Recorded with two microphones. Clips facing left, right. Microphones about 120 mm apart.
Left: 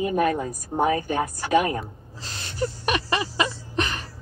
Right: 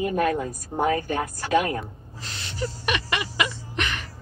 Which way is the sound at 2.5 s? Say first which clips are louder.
Left 3 dB; 40° left (ahead or behind).